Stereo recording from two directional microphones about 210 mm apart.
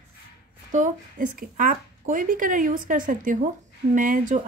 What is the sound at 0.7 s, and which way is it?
Speech, 40° right (ahead or behind).